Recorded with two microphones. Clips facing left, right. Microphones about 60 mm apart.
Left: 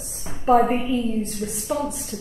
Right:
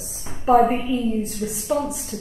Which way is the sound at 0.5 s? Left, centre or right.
Centre.